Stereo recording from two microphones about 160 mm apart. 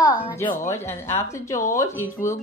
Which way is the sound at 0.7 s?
15° left (ahead or behind).